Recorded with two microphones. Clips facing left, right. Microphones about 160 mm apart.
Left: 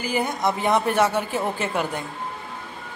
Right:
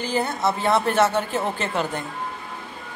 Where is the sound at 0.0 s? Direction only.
10° left (ahead or behind).